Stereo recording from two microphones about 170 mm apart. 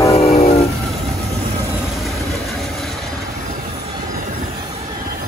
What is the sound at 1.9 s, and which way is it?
Vehicle, centre (ahead or behind).